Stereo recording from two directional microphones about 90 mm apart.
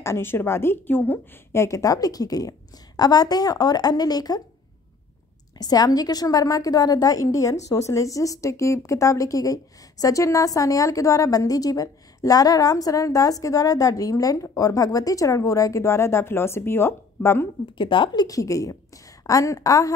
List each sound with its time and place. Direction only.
0.0 s a woman's voice: 30° left (ahead or behind); by 4.4 s 45° left (ahead or behind)
5.6 s a woman's voice: 45° left (ahead or behind); by 17.5 s 25° left (ahead or behind)
17.7 s a woman's voice: 65° left (ahead or behind)
18.2 s a woman's voice: 40° left (ahead or behind)